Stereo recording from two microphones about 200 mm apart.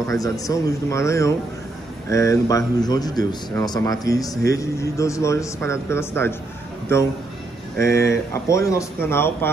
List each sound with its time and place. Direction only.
0.1 s a man's voice: 15° left (ahead or behind)
7.8 s a man's voice: 15° left (ahead or behind)